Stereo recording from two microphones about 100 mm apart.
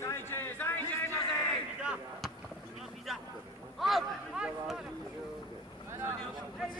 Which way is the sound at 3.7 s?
Centre (ahead or behind).